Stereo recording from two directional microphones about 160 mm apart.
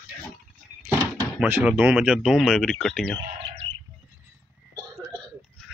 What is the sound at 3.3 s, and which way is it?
Bird, 35° right (ahead or behind).